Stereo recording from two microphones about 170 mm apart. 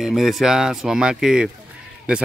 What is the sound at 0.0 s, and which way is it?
Speech, centre (ahead or behind).